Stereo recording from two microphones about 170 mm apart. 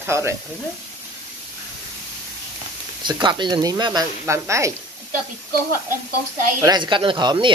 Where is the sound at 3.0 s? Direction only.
25° right (ahead or behind).